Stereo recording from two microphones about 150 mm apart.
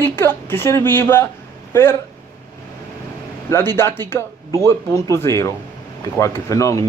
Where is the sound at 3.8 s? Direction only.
15° left (ahead or behind).